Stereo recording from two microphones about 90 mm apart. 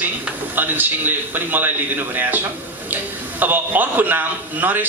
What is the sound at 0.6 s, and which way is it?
A man's voice, 20° right (ahead or behind).